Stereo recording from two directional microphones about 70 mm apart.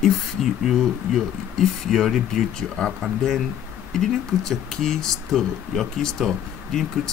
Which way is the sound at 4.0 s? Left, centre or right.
Centre.